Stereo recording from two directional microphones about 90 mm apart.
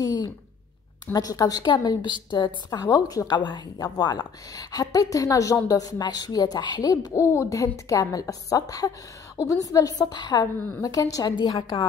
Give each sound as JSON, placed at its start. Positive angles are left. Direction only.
{"t": 0.0, "sound": "a sound", "side_deg": 50}
{"t": 1.1, "sound": "a woman's voice", "side_deg": 45}
{"t": 2.8, "sound": "a woman's voice", "side_deg": 45}
{"t": 10.4, "sound": "a woman's voice", "side_deg": 40}
{"t": 11.3, "sound": "a woman's voice", "side_deg": 55}